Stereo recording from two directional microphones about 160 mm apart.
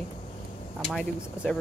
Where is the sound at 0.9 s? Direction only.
Centre (ahead or behind).